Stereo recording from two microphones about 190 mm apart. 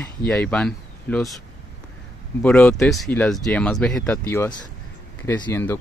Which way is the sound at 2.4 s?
5° left (ahead or behind).